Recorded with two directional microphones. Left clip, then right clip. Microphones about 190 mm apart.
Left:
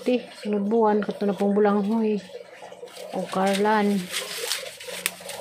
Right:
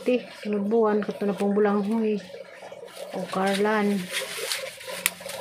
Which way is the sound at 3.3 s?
5° left (ahead or behind).